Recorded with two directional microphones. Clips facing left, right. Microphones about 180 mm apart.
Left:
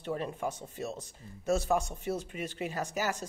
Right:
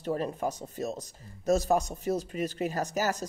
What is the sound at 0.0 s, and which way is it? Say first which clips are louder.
Speech: right 4 dB; 40° right (ahead or behind).